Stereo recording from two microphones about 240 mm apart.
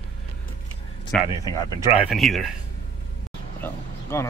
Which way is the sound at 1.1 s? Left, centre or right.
Centre.